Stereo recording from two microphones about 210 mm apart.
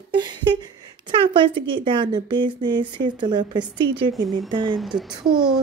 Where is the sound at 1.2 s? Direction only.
25° right (ahead or behind).